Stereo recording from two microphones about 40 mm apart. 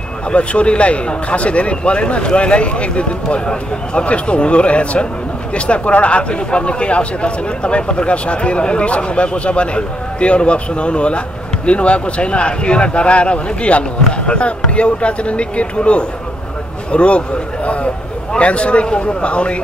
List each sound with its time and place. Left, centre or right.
0.3 s speech: left
18.3 s speech: left